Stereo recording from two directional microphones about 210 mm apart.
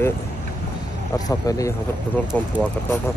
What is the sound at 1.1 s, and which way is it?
Speech, 15° left (ahead or behind).